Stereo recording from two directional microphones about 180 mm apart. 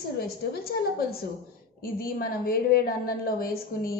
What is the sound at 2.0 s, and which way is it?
A woman's voice, 55° left (ahead or behind).